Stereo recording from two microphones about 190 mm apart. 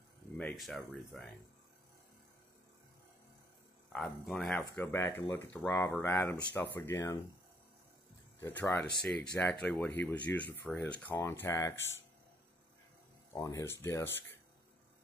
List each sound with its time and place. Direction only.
0.4 s speech: 5° left (ahead or behind)
3.9 s speech: centre (ahead or behind)
4.7 s speech: 10° left (ahead or behind)
8.4 s speech: 10° left (ahead or behind)
13.3 s speech: 20° left (ahead or behind)